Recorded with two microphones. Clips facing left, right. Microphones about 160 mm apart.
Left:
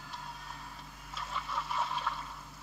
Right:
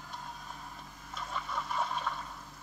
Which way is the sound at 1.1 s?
5° left (ahead or behind).